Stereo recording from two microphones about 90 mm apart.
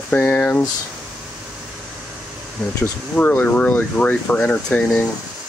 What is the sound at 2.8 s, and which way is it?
Speech, 20° left (ahead or behind).